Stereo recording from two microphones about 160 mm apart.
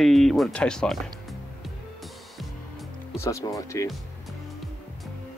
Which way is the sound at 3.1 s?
20° left (ahead or behind).